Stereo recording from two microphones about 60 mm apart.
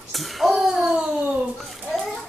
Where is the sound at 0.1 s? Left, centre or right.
Centre.